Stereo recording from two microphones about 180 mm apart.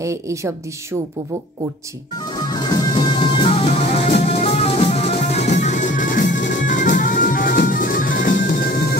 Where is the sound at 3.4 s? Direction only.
30° left (ahead or behind).